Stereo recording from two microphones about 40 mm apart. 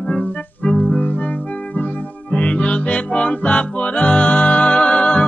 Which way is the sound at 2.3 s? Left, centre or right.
Left.